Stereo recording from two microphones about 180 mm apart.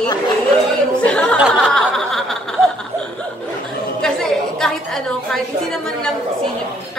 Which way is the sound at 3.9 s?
5° left (ahead or behind).